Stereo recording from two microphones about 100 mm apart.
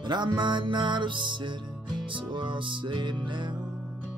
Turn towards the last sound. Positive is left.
turn(degrees=-50)  # may be behind; listen again after turning